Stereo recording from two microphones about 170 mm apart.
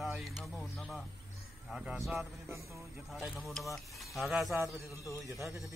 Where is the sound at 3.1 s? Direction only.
Centre (ahead or behind).